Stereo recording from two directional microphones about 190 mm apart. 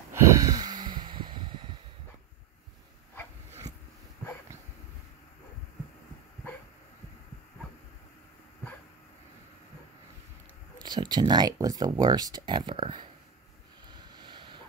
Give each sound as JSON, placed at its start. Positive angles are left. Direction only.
{"t": 0.1, "sound": "snort", "side_deg": -20}
{"t": 10.8, "sound": "speech", "side_deg": -25}
{"t": 13.8, "sound": "a sound", "side_deg": -25}